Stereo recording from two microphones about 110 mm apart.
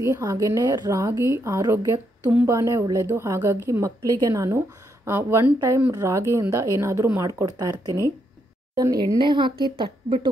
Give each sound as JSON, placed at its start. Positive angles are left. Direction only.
{"t": 0.0, "sound": "a woman's voice", "side_deg": -30}
{"t": 9.3, "sound": "a woman's voice", "side_deg": -45}